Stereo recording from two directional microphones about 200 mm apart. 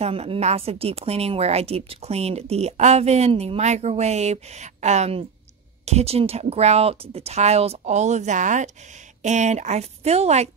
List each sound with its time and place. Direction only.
0.0 s a woman's voice: 30° right (ahead or behind)